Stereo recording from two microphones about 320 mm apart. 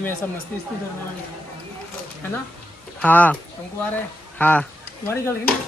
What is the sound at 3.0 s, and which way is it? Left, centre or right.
Speech, centre.